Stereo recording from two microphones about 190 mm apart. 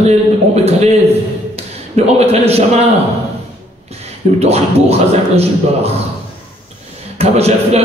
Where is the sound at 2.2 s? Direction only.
35° right (ahead or behind).